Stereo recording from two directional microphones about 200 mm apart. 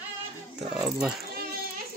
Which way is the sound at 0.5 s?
5° right (ahead or behind).